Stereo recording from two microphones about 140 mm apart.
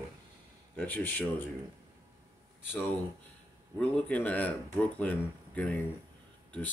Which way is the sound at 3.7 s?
10° left (ahead or behind).